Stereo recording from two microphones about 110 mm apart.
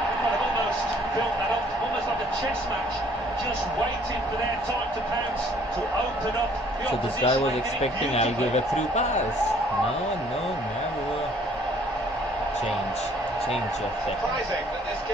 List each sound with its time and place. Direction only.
7.2 s speech: 60° left (ahead or behind); by 9.2 s 90° left